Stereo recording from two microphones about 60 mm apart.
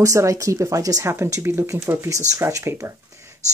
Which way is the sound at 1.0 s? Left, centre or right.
Right.